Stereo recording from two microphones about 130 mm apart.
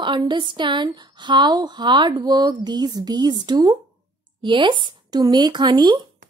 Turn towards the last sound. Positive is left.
turn(degrees=-35)  # may be behind; listen again after turning